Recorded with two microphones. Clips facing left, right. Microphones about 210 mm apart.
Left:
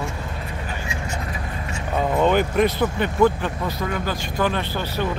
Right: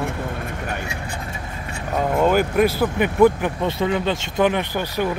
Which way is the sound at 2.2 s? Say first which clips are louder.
Right 1 dB; 5° right (ahead or behind).